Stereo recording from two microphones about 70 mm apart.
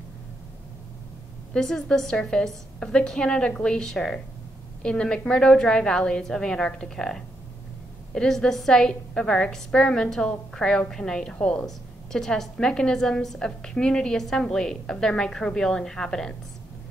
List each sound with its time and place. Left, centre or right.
1.5 s a woman's voice: centre